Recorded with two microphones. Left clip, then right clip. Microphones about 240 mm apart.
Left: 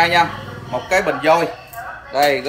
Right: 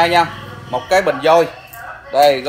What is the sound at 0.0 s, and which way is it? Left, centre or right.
Speech, right.